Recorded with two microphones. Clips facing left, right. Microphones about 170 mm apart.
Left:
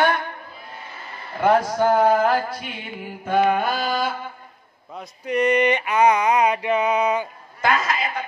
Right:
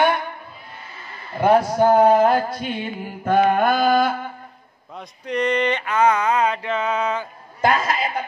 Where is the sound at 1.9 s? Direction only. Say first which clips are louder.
Right 3 dB; 30° right (ahead or behind).